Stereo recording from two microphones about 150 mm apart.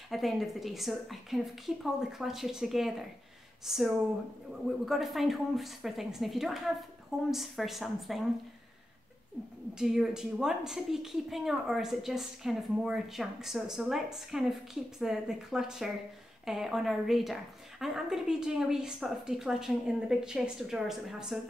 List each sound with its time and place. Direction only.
0.1 s a woman's voice: centre (ahead or behind)
9.8 s a woman's voice: 5° right (ahead or behind)